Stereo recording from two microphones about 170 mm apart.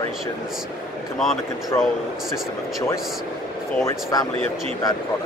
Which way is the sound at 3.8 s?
20° left (ahead or behind).